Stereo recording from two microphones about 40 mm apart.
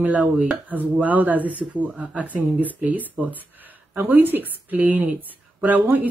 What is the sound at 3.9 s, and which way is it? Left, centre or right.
Speech, right.